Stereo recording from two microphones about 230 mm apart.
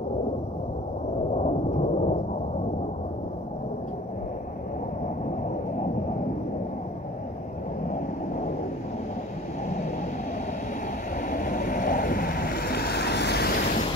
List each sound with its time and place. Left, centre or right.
1.3 s thunder: left
5.0 s a sound: left
11.2 s vehicle: left